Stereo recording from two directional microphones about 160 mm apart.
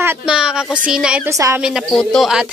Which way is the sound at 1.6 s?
Centre (ahead or behind).